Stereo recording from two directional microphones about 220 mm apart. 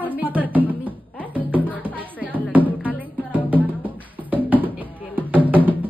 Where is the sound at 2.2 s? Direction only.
5° right (ahead or behind).